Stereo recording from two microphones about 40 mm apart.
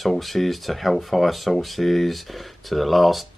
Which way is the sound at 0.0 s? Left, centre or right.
Centre.